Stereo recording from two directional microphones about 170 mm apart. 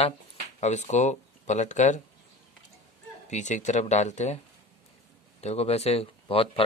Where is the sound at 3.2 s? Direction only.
45° left (ahead or behind).